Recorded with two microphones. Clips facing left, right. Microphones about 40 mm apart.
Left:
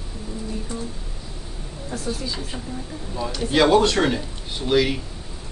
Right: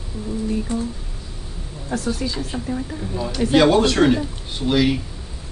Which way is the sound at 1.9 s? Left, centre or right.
Right.